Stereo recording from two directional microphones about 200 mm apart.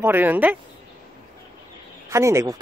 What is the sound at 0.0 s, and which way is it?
Speech, 10° right (ahead or behind).